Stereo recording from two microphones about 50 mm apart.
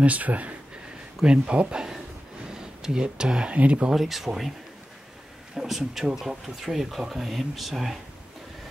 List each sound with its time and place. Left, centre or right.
0.0 s speech: right
1.2 s speech: right
2.4 s a sound: centre
3.5 s speech: right
3.9 s speech: centre
5.6 s speech: centre